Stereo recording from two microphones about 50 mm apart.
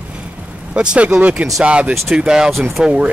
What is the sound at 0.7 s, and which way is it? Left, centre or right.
Speech, centre.